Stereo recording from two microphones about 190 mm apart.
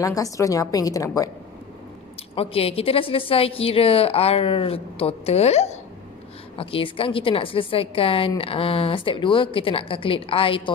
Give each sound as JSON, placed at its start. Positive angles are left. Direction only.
{"t": 0.0, "sound": "a woman's voice", "side_deg": 15}
{"t": 2.3, "sound": "a woman's voice", "side_deg": 30}